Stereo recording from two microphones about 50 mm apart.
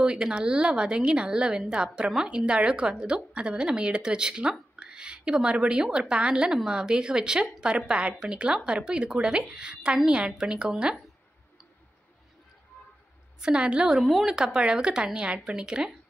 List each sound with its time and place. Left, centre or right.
0.0 s a woman's voice: centre
13.4 s a woman's voice: centre
13.8 s a woman's voice: centre